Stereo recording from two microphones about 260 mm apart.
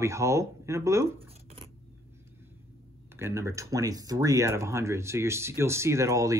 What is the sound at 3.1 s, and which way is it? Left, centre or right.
Speech, centre.